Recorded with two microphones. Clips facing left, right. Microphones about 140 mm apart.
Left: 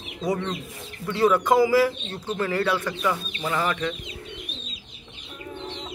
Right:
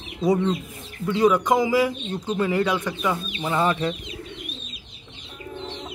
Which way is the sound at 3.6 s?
30° right (ahead or behind).